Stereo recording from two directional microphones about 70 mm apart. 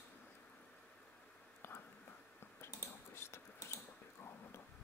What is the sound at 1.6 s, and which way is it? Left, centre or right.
Whispering, left.